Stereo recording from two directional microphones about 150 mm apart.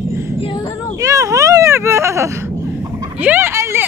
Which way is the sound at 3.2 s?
15° right (ahead or behind).